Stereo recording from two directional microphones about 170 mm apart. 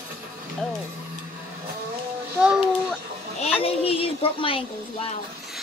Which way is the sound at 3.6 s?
35° left (ahead or behind).